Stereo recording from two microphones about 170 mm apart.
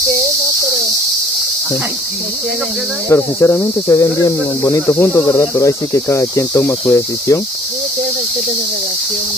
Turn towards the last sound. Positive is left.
turn(degrees=15)  # may be behind; listen again after turning